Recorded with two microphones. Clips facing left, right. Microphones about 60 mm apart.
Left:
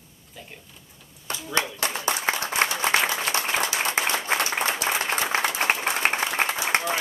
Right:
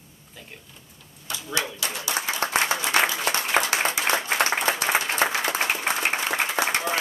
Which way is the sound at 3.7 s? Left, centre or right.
Right.